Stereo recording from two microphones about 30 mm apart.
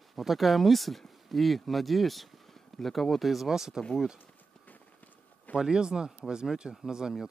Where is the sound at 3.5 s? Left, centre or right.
Centre.